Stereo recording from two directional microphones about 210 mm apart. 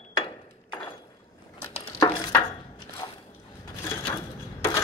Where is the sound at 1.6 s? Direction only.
20° left (ahead or behind).